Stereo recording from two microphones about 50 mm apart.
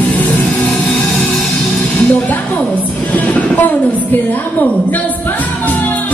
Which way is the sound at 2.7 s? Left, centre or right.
Left.